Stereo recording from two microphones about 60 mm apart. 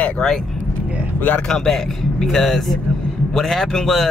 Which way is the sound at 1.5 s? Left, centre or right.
Centre.